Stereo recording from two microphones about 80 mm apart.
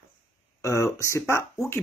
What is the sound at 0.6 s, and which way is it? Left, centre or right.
Speech, left.